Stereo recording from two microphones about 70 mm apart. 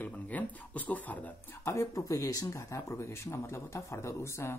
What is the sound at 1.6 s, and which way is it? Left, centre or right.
Speech, left.